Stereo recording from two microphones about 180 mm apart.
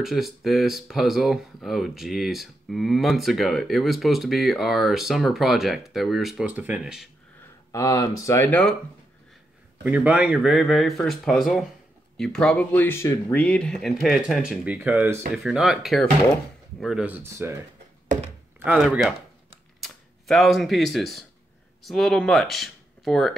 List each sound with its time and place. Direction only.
0.0 s speech: centre (ahead or behind)
7.7 s speech: 20° left (ahead or behind)
9.8 s speech: 10° right (ahead or behind)
18.6 s speech: 5° right (ahead or behind)